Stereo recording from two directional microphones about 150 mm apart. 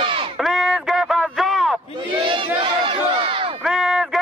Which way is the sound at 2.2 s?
35° right (ahead or behind).